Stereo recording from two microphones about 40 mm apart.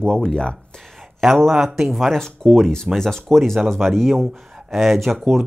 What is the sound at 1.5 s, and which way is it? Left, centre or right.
Speech, centre.